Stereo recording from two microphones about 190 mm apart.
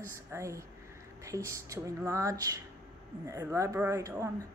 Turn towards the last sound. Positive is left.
turn(degrees=-15)  # may be behind; listen again after turning